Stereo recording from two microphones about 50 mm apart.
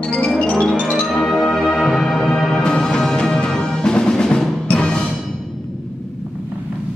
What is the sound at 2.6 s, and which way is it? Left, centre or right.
Music, centre.